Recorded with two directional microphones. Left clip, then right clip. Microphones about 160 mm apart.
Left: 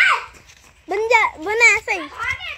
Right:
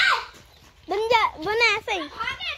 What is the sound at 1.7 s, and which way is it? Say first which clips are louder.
Speech: left 5 dB; 10° left (ahead or behind).